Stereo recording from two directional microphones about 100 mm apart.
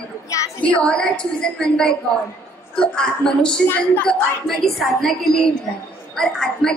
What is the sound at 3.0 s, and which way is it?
A woman's voice, 5° left (ahead or behind).